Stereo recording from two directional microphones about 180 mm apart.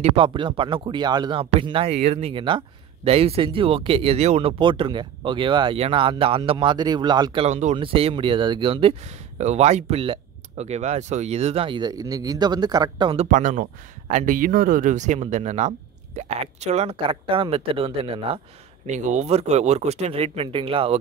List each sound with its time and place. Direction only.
0.0 s speech: 30° right (ahead or behind)
7.4 s speech: 40° right (ahead or behind)
18.9 s speech: 40° right (ahead or behind)